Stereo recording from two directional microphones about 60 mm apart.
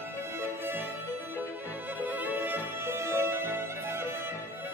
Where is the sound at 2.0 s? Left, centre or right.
Right.